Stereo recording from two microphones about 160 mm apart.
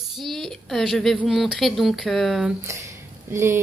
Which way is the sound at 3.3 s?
15° right (ahead or behind).